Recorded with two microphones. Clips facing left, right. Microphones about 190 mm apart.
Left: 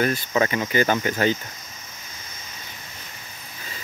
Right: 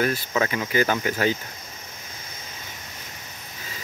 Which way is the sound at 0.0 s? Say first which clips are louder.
Left 2 dB; centre (ahead or behind).